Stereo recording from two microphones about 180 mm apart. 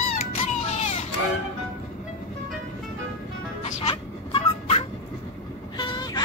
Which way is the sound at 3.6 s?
35° left (ahead or behind).